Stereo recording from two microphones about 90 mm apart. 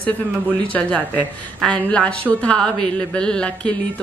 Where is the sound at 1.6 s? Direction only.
10° left (ahead or behind).